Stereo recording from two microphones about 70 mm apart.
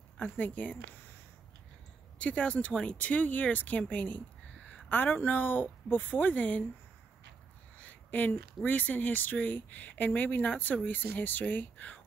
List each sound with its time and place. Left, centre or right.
0.2 s speech: left
2.1 s speech: centre
7.8 s a sound: left
8.6 s speech: left